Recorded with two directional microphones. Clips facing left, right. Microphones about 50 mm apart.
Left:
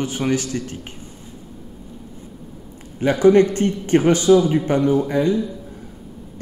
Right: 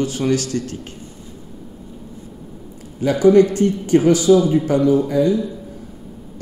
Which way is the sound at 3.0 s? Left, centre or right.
Left.